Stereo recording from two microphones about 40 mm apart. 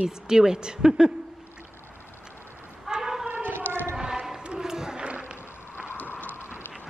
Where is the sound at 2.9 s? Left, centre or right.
Centre.